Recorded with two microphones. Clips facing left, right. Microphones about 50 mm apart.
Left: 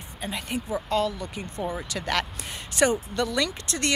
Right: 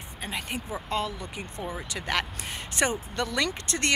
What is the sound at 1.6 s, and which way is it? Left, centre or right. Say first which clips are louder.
Speech: left 5 dB; centre.